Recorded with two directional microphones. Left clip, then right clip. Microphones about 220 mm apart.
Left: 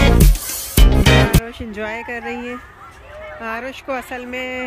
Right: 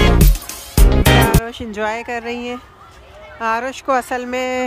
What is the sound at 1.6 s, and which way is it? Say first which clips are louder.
Speech: right 4 dB; 10° right (ahead or behind).